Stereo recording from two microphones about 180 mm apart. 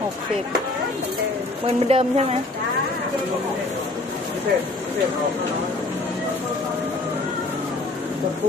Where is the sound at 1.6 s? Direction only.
35° right (ahead or behind).